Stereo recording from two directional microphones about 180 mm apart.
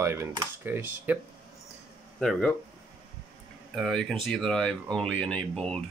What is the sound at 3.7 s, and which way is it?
Speech, centre (ahead or behind).